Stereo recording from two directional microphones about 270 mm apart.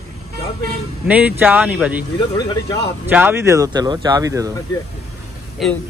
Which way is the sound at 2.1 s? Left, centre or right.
Centre.